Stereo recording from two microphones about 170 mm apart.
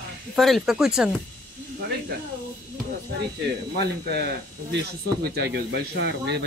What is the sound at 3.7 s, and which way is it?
Speech, 75° right (ahead or behind).